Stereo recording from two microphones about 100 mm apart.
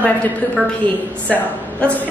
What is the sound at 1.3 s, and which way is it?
Speech, 15° left (ahead or behind).